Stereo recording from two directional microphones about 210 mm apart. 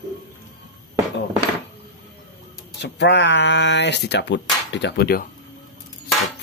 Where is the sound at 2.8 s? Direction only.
55° left (ahead or behind).